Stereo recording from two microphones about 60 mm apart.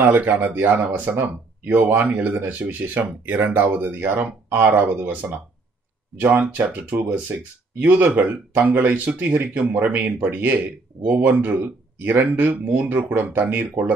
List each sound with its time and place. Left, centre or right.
0.0 s speech: right
6.1 s speech: centre
6.6 s a man's voice: right